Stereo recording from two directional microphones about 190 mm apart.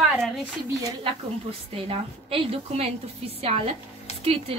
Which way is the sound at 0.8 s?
30° right (ahead or behind).